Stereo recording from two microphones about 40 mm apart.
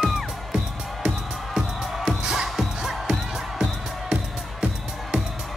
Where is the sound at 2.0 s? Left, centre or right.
Centre.